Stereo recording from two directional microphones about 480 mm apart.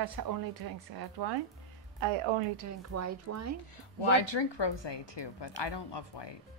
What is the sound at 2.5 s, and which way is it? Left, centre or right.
Speech, right.